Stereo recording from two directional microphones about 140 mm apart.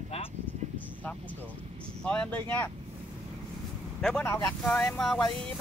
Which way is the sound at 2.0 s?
10° left (ahead or behind).